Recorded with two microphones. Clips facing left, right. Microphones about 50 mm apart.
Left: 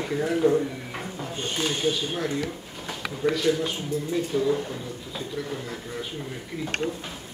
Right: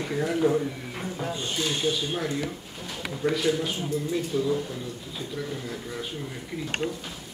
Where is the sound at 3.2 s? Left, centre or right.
Centre.